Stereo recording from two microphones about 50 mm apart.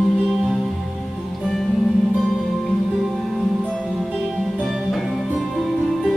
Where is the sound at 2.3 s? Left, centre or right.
Centre.